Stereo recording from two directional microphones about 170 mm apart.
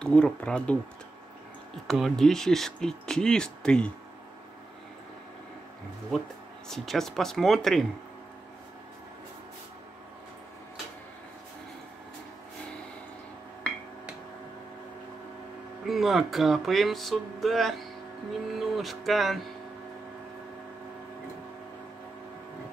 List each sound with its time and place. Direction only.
0.0 s speech: 5° left (ahead or behind)
1.9 s speech: centre (ahead or behind)
6.1 s speech: centre (ahead or behind)
15.8 s speech: centre (ahead or behind)